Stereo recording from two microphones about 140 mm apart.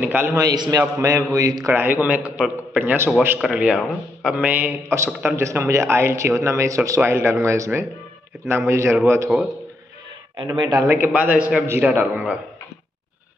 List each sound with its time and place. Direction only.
0.0 s a man's voice: 15° right (ahead or behind)
10.4 s a man's voice: 30° right (ahead or behind)
11.1 s a man's voice: 10° right (ahead or behind)